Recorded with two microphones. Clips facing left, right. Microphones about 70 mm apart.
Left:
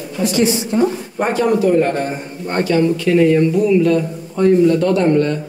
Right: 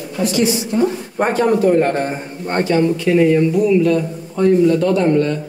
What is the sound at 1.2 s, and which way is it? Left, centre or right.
A man's voice, right.